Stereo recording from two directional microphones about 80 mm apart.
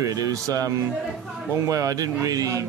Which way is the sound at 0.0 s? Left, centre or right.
Right.